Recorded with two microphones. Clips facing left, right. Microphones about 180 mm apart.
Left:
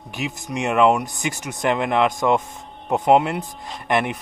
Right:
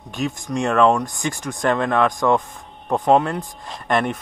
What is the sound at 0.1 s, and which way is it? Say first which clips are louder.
Speech: right 4 dB; 5° left (ahead or behind).